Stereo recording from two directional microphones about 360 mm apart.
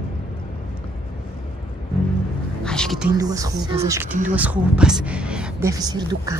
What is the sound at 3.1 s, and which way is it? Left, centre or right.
Speech, centre.